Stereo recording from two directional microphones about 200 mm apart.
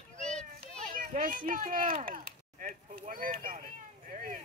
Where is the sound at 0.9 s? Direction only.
40° right (ahead or behind).